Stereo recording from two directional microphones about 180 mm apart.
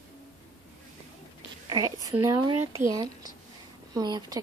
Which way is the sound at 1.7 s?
20° right (ahead or behind).